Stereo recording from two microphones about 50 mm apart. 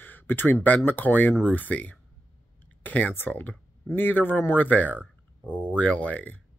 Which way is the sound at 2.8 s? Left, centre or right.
Left.